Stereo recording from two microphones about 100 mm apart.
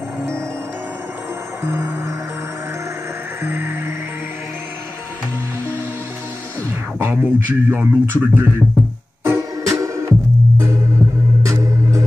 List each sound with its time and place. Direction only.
1.6 s music: 25° right (ahead or behind)
3.4 s music: 25° right (ahead or behind)
7.0 s speech: 20° right (ahead or behind)
9.2 s music: 30° right (ahead or behind)
11.4 s music: 30° right (ahead or behind)